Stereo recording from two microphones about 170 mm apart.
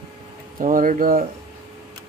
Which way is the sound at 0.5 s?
50° right (ahead or behind).